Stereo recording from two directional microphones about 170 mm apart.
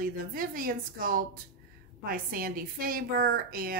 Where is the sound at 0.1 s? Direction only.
60° right (ahead or behind).